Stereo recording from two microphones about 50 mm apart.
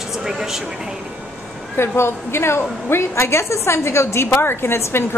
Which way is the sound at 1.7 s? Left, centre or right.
Left.